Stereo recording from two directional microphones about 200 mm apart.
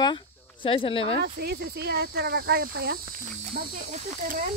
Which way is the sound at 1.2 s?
55° right (ahead or behind).